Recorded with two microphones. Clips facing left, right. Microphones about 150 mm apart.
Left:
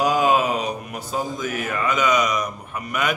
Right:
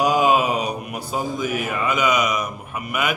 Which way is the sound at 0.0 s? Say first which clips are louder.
Right 1 dB; 10° right (ahead or behind).